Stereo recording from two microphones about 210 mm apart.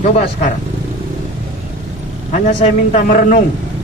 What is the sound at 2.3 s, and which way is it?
A man's voice, 35° left (ahead or behind).